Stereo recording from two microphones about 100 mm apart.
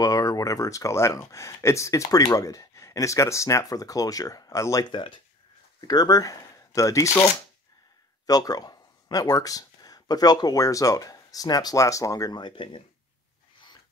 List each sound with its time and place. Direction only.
0.0 s speech: 35° left (ahead or behind)
4.9 s speech: 55° left (ahead or behind)
5.8 s speech: 40° left (ahead or behind)